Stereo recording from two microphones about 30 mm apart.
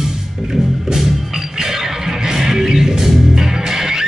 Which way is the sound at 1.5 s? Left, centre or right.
Centre.